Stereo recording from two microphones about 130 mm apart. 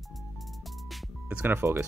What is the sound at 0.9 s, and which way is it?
Music, 10° right (ahead or behind).